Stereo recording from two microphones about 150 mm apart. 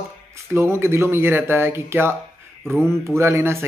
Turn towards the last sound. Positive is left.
turn(degrees=-15)  # may be behind; listen again after turning